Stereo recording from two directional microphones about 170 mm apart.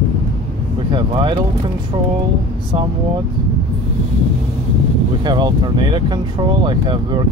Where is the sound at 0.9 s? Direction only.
25° right (ahead or behind).